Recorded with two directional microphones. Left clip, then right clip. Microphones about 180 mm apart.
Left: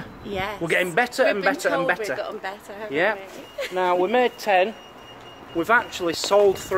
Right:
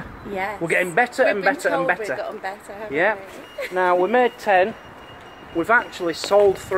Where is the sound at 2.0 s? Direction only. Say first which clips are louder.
Right 1 dB; 15° left (ahead or behind).